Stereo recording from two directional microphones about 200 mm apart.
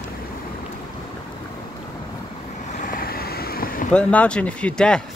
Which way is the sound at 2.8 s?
45° left (ahead or behind).